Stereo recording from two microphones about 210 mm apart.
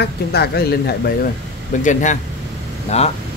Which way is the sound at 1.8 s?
35° left (ahead or behind).